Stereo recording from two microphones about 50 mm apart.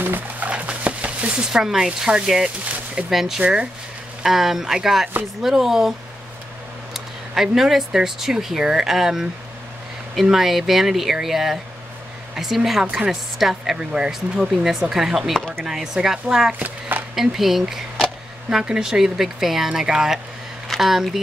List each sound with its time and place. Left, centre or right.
0.0 s a sound: right
0.5 s a sound: right
1.4 s speech: centre
3.3 s speech: centre
4.2 s speech: centre
7.5 s speech: centre
13.7 s speech: centre
14.4 s speech: centre
16.5 s a sound: right
17.1 s speech: centre